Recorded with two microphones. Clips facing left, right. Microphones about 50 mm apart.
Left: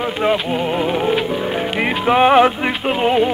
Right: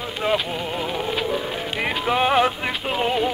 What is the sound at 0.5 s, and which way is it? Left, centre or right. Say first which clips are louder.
Music: left 8 dB; left.